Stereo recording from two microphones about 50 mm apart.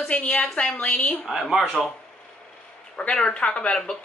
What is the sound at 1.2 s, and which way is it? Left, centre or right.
Speech, centre.